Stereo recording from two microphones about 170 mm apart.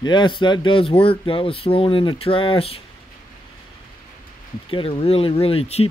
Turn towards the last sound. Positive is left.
turn(degrees=35)  # may be behind; listen again after turning